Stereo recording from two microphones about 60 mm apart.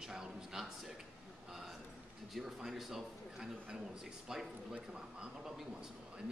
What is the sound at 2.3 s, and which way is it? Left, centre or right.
Speech, centre.